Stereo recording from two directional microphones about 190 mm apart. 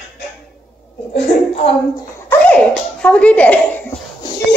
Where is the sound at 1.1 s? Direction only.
30° left (ahead or behind).